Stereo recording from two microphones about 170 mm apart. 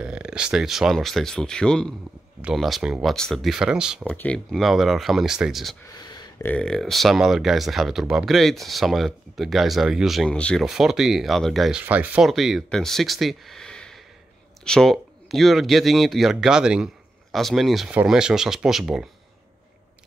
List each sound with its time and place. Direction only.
0.0 s speech: 5° right (ahead or behind)
4.1 s speech: 5° left (ahead or behind)
5.9 s a sound: 25° left (ahead or behind)
6.4 s speech: 5° left (ahead or behind)